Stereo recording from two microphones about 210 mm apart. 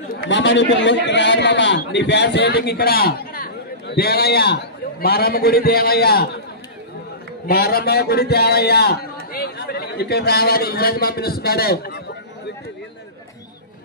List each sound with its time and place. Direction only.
0.3 s a man's voice: 60° left (ahead or behind)
7.4 s a man's voice: 45° left (ahead or behind)